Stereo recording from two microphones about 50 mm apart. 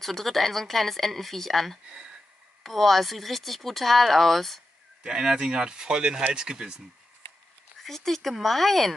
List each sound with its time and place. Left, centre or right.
0.0 s speech: centre
1.9 s speech: centre
2.6 s speech: centre
5.0 s speech: centre
7.8 s speech: centre